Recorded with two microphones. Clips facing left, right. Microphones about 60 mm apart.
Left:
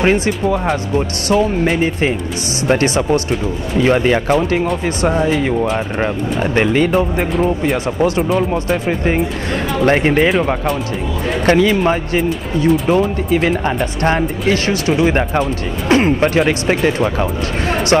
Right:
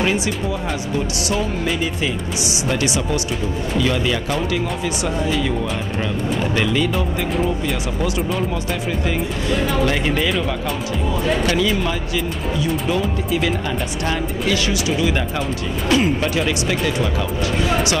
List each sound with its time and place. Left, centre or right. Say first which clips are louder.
0.0 s speech: left 6 dB; left
11.4 s speech: left 7 dB; left